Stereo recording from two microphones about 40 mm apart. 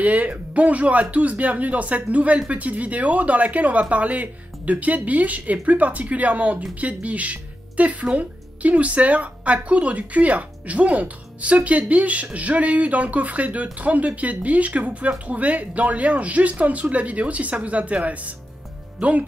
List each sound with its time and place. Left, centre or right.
0.0 s speech: right